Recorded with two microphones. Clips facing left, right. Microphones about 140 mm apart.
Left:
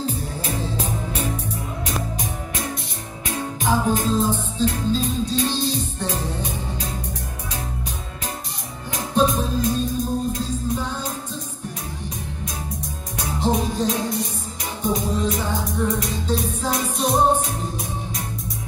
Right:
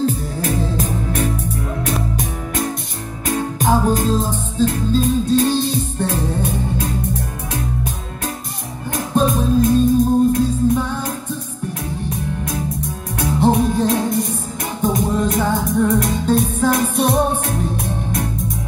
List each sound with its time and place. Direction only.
0.4 s music: 50° right (ahead or behind)
3.3 s music: 50° right (ahead or behind)
8.9 s music: 50° right (ahead or behind)
13.2 s music: 60° right (ahead or behind)